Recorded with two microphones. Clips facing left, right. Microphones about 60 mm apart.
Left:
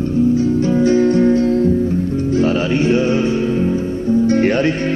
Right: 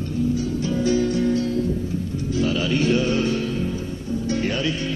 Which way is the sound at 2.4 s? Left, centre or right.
Left.